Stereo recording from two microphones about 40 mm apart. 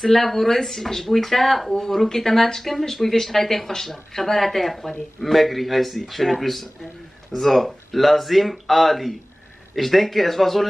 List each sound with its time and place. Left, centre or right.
0.0 s speech: centre